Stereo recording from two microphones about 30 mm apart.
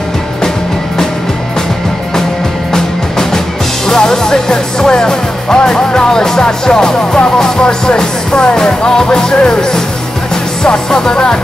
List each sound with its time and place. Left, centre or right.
2.7 s music: centre